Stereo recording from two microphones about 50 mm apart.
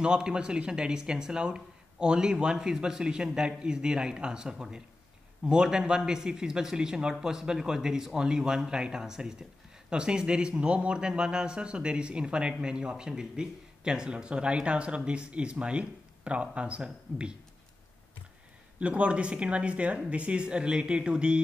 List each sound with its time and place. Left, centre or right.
0.0 s a man's voice: centre
18.8 s a man's voice: right